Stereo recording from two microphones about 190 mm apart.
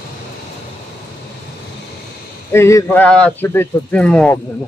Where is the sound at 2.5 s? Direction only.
15° left (ahead or behind).